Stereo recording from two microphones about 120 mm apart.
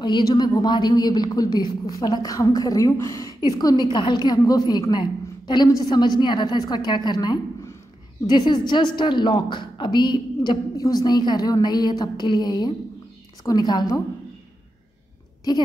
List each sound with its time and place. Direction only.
0.0 s a woman's voice: 40° left (ahead or behind)
15.5 s a woman's voice: 35° left (ahead or behind)